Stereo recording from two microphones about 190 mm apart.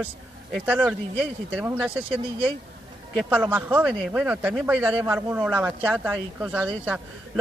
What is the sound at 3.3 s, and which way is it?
A man's voice, 10° right (ahead or behind).